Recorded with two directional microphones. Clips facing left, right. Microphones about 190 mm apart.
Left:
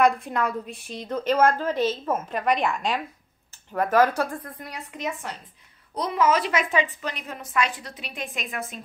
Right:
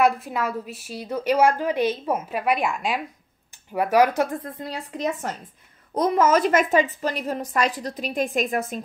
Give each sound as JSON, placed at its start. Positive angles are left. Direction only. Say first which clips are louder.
{"t": 0.0, "sound": "a woman's voice", "louder": "even", "side_deg": -5}